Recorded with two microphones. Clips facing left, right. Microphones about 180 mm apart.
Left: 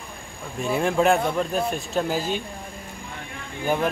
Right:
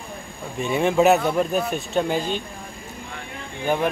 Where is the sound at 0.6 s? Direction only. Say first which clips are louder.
Right 3 dB; centre (ahead or behind).